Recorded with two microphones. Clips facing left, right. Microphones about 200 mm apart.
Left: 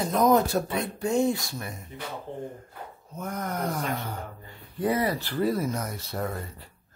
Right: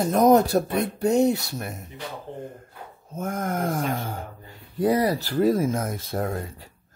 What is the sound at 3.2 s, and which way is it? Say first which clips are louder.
Speech: right 4 dB; 50° right (ahead or behind).